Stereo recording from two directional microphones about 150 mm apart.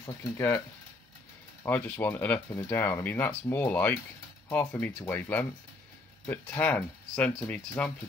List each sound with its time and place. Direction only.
0.0 s speech: 15° left (ahead or behind)
1.6 s speech: 15° left (ahead or behind)